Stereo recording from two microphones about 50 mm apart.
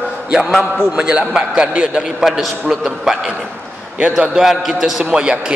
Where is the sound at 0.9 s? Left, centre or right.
Centre.